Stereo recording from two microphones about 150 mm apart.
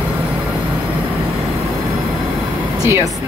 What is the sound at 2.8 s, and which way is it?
Speech, 20° right (ahead or behind).